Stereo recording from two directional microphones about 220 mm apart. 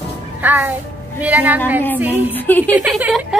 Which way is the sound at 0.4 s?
10° right (ahead or behind).